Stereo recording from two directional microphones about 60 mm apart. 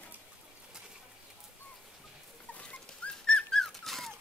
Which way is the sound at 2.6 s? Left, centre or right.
Centre.